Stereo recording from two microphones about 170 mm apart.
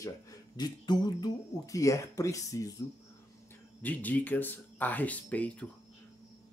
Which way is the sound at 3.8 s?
10° left (ahead or behind).